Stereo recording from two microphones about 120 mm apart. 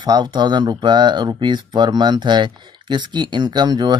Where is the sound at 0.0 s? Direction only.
35° right (ahead or behind).